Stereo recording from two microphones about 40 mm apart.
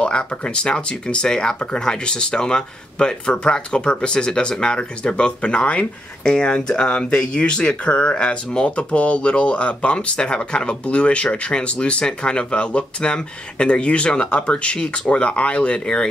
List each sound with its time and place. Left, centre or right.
0.0 s speech: left